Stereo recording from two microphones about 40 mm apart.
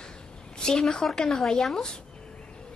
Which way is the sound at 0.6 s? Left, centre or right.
Centre.